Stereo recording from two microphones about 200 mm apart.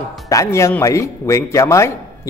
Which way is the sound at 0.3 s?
15° left (ahead or behind).